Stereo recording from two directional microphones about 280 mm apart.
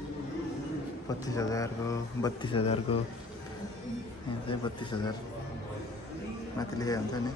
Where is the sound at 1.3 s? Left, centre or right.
Centre.